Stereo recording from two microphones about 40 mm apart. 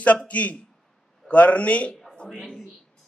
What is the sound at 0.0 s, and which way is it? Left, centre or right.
A man's voice, left.